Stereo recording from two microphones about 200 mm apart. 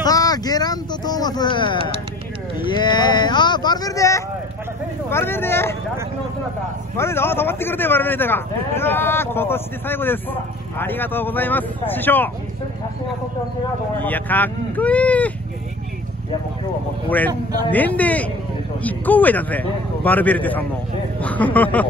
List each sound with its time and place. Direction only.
0.0 s a sound: 20° left (ahead or behind)
2.6 s speech: 20° left (ahead or behind)
7.0 s speech: 10° left (ahead or behind)
14.0 s speech: 10° left (ahead or behind)
17.6 s speech: 10° left (ahead or behind)